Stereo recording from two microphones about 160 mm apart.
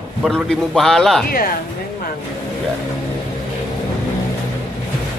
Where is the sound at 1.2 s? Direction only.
65° left (ahead or behind).